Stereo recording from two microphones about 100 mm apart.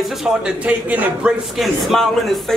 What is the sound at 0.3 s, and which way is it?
Speech, 10° right (ahead or behind).